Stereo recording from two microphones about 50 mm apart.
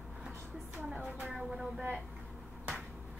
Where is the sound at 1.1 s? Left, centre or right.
Right.